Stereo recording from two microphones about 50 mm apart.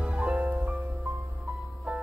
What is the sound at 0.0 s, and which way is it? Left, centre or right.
Music, right.